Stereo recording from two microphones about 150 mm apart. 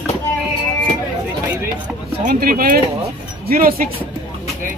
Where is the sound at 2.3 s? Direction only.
70° right (ahead or behind).